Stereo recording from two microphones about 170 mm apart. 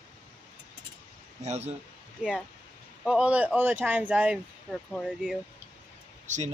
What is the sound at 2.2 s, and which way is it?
Speech, 5° right (ahead or behind).